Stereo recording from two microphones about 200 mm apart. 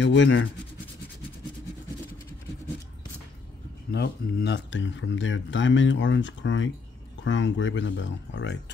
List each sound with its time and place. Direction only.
0.0 s speech: 65° left (ahead or behind)
3.9 s speech: 55° left (ahead or behind)